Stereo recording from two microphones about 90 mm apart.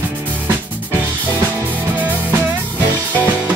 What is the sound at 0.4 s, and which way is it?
Music, 20° right (ahead or behind).